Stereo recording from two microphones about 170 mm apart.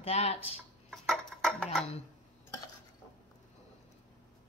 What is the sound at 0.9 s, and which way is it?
Cutlery, centre (ahead or behind).